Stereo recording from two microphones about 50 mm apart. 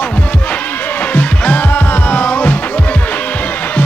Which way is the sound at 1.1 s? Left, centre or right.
Left.